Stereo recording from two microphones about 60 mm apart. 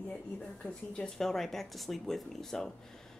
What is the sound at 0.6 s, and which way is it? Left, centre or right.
Speech, centre.